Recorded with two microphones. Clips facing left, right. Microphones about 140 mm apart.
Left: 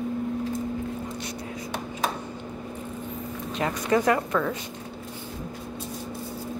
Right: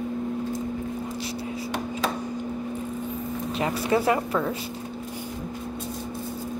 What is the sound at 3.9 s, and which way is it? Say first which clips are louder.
Speech: left 1 dB; 25° right (ahead or behind).